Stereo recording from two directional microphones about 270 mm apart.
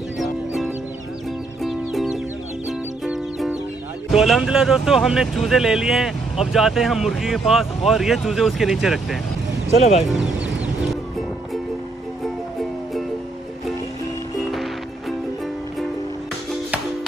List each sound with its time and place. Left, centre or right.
1.6 s music: centre
4.1 s speech: centre
9.8 s speech: left
10.1 s speech: centre
14.5 s music: centre